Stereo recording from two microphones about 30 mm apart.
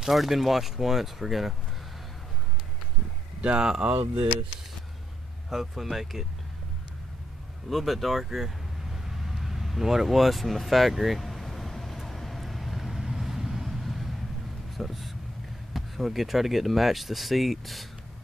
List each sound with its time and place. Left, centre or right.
0.0 s speech: centre
3.3 s speech: right
3.8 s speech: right
5.5 s speech: centre
7.7 s speech: centre
8.9 s vehicle: centre
10.0 s speech: centre
12.1 s vehicle: centre
12.9 s vehicle: centre
14.8 s speech: centre